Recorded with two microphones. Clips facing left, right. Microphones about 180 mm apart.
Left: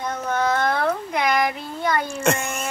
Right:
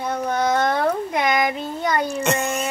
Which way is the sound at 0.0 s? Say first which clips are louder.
Right 2 dB; 10° right (ahead or behind).